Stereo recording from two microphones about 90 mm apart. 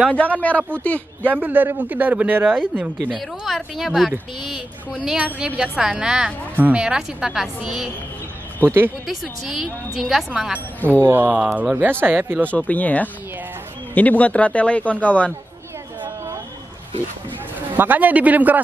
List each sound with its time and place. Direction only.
0.1 s speech: 15° left (ahead or behind)
1.2 s a woman's voice: 20° right (ahead or behind)
3.2 s a woman's voice: centre (ahead or behind)
8.6 s speech: 25° right (ahead or behind)
9.0 s a woman's voice: centre (ahead or behind)
11.1 s speech: 20° right (ahead or behind)
12.4 s speech: 15° left (ahead or behind)
17.7 s speech: 20° right (ahead or behind)